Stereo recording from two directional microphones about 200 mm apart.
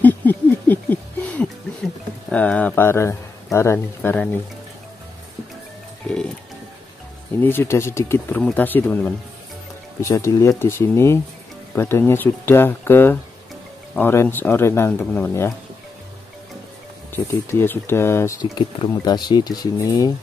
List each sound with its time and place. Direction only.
0.0 s a sound: 10° left (ahead or behind)
2.2 s speech: 5° left (ahead or behind)
7.3 s speech: 10° left (ahead or behind)
17.1 s speech: 10° left (ahead or behind)